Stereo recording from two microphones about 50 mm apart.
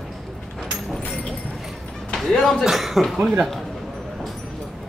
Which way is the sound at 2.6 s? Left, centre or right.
Centre.